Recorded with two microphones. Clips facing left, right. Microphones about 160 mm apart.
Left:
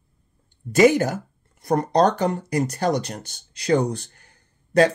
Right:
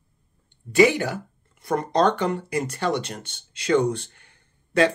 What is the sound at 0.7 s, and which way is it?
Speech, 40° left (ahead or behind).